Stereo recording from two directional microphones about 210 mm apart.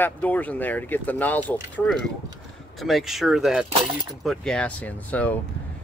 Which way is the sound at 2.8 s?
Centre (ahead or behind).